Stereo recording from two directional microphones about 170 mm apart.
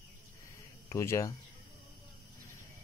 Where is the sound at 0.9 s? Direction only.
15° left (ahead or behind).